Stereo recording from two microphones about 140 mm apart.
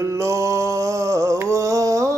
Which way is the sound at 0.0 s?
20° right (ahead or behind).